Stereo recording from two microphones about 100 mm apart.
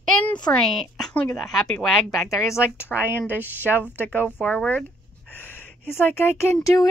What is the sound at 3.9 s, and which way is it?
Speech, 20° left (ahead or behind).